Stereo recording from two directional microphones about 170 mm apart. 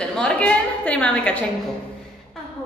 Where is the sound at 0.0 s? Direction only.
5° left (ahead or behind).